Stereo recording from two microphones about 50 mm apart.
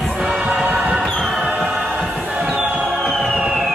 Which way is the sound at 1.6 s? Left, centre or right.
Centre.